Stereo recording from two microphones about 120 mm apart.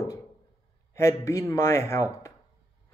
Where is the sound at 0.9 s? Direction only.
25° left (ahead or behind).